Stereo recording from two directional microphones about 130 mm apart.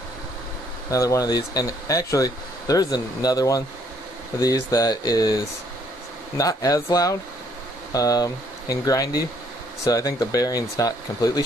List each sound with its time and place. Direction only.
0.8 s speech: 25° left (ahead or behind)